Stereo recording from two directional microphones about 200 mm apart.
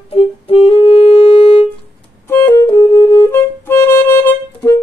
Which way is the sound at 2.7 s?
20° left (ahead or behind).